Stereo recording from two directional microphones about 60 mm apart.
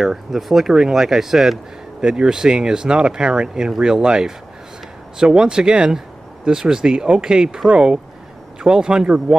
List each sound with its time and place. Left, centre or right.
0.0 s speech: centre